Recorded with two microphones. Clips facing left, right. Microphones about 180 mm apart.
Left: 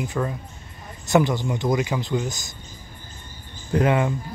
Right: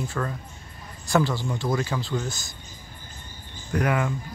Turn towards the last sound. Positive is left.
turn(degrees=25)  # may be behind; listen again after turning